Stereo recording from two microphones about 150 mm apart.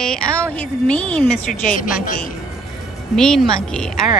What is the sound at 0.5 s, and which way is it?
Speech, 10° left (ahead or behind).